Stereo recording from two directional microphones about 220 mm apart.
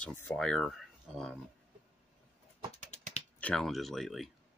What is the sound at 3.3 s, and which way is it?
Speech, 5° left (ahead or behind).